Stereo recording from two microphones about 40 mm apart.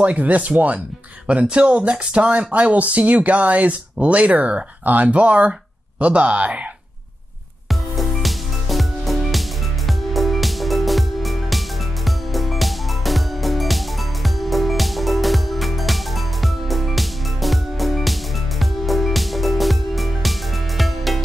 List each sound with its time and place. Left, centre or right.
0.0 s speech: right
1.2 s speech: right
7.9 s music: centre